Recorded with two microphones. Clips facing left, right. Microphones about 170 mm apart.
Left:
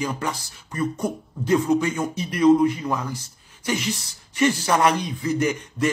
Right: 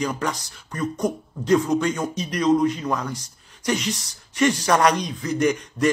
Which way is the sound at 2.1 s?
10° left (ahead or behind).